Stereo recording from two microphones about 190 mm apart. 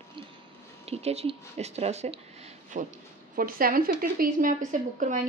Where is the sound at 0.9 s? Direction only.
35° right (ahead or behind).